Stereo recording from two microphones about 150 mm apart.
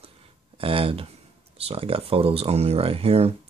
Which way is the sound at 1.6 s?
40° right (ahead or behind).